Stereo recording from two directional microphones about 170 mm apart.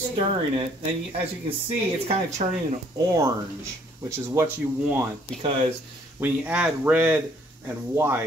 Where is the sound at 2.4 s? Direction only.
40° right (ahead or behind).